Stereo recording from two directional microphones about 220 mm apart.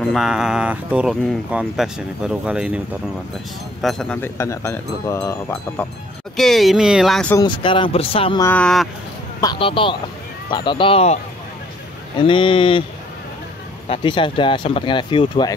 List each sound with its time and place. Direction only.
0.1 s speech: centre (ahead or behind)
3.8 s speech: 5° left (ahead or behind)
7.3 s speech: 20° left (ahead or behind)
8.5 s speech: 5° left (ahead or behind)
9.4 s speech: 20° left (ahead or behind)
12.2 s speech: 25° left (ahead or behind)
13.8 s speech: 25° left (ahead or behind)